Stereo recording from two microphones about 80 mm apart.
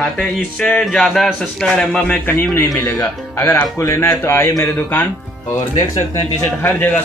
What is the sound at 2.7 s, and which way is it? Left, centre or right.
Speech, left.